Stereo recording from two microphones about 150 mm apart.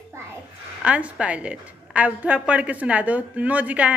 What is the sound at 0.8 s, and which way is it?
A woman's voice, 10° right (ahead or behind).